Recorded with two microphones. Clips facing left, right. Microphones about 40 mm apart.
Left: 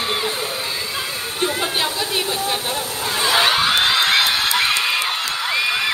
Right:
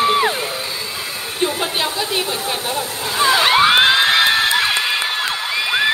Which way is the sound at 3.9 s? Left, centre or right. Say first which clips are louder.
Right 3 dB; right.